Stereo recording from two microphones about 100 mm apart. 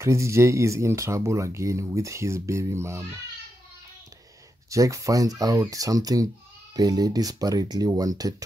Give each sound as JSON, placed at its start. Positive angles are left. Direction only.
{"t": 0.0, "sound": "speech", "side_deg": -30}
{"t": 4.6, "sound": "speech", "side_deg": -35}